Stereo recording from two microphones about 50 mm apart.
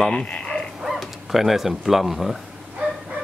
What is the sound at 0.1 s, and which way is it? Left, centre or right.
Dog, left.